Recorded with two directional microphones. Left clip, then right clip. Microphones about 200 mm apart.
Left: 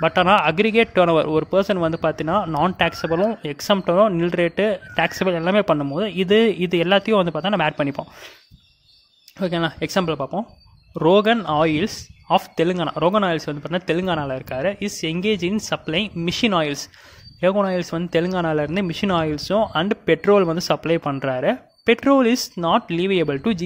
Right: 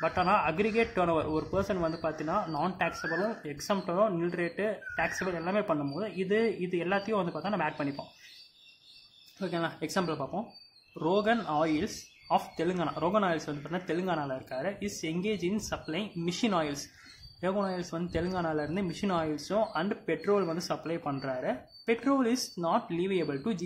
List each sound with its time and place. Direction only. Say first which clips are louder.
0.0 s a man's voice: left 11 dB; 45° left (ahead or behind)
9.4 s speech: left 11 dB; 40° left (ahead or behind)